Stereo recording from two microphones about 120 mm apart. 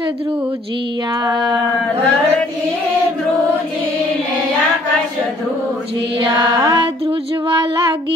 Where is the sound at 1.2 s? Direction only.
40° right (ahead or behind).